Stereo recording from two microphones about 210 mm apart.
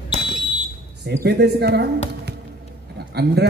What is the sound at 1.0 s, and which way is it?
Speech, 55° right (ahead or behind).